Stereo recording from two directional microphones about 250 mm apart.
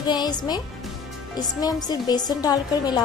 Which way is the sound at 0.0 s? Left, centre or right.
Centre.